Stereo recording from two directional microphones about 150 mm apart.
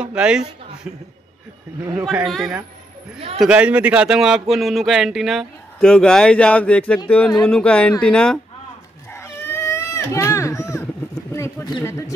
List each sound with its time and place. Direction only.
0.0 s speech: 5° right (ahead or behind)
2.0 s a man's voice: centre (ahead or behind)
9.1 s a sound: 15° left (ahead or behind)